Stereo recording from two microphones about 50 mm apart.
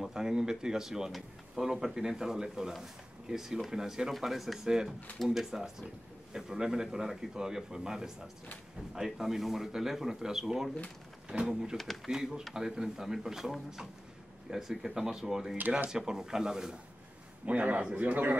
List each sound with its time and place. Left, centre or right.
0.0 s speech: centre
11.7 s speech: centre
12.1 s speech: centre
17.5 s speech: right